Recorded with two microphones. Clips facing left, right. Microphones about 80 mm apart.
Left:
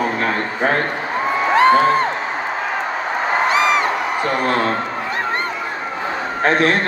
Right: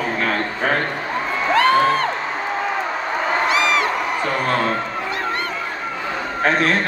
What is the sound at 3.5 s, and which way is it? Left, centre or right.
Crowd, left.